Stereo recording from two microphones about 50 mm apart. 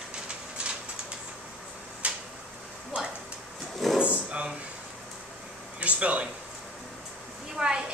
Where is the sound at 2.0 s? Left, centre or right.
Right.